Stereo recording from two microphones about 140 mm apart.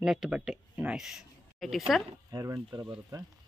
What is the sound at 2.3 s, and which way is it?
Speech, 25° right (ahead or behind).